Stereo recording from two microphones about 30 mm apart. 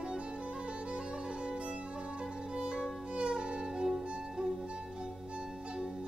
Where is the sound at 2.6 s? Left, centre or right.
Right.